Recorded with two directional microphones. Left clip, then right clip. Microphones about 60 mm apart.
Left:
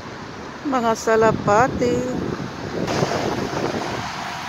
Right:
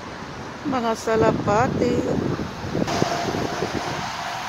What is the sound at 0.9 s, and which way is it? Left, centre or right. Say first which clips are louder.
Speech: left 3 dB; left.